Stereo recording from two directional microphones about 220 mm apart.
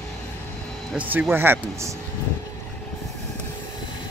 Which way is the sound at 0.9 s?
5° right (ahead or behind).